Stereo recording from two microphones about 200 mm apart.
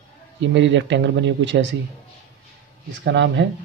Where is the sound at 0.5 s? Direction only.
65° right (ahead or behind).